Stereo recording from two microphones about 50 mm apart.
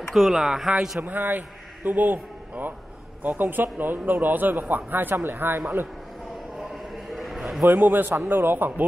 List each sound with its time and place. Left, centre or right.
0.3 s speech: centre
1.0 s a man's voice: right
7.1 s a sound: centre
7.6 s a man's voice: right